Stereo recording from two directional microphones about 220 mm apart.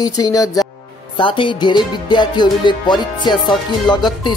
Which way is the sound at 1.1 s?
20° left (ahead or behind).